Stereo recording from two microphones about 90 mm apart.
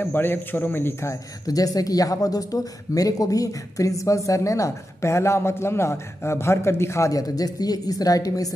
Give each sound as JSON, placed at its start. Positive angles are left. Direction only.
{"t": 0.0, "sound": "a man's voice", "side_deg": 25}
{"t": 1.5, "sound": "speech", "side_deg": 45}